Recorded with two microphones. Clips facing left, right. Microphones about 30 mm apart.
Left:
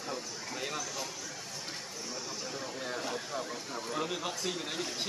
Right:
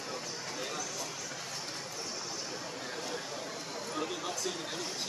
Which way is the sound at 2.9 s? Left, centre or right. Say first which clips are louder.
Left 3 dB; centre.